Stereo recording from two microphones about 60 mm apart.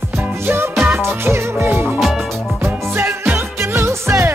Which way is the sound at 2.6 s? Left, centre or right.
Right.